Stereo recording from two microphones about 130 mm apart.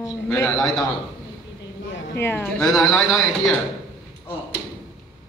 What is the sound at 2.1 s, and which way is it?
Speech, 20° left (ahead or behind).